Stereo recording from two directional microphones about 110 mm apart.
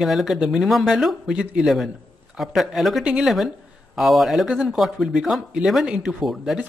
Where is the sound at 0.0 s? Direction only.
Centre (ahead or behind).